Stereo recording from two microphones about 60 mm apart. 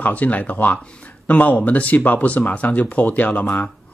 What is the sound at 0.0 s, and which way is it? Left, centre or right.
Speech, left.